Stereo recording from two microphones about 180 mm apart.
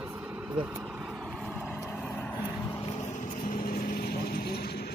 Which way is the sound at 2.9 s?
40° left (ahead or behind).